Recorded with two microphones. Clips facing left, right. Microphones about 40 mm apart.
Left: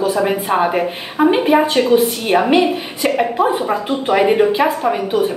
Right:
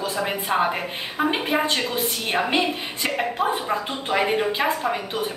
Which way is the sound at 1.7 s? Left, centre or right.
Left.